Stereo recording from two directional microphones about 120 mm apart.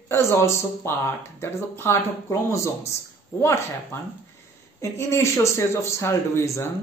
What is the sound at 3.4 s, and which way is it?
Speech, 25° left (ahead or behind).